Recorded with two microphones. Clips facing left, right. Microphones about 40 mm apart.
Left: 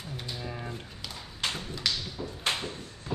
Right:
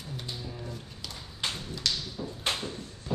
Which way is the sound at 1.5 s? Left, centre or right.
Centre.